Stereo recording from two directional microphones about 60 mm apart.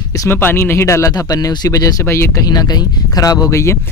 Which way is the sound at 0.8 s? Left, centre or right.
Left.